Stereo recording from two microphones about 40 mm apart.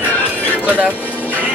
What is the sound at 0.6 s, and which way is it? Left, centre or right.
Speech, right.